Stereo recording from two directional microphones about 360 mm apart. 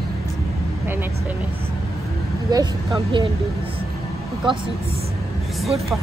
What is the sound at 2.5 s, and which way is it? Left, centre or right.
Speech, centre.